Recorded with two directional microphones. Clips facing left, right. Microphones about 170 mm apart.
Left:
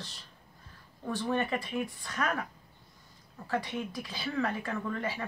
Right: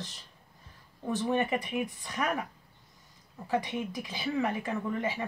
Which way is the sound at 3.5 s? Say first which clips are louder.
Right 2 dB; 15° right (ahead or behind).